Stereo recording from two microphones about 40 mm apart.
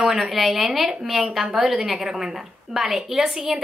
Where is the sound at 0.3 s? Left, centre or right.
Centre.